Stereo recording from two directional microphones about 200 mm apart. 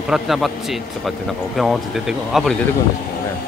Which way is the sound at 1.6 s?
Centre (ahead or behind).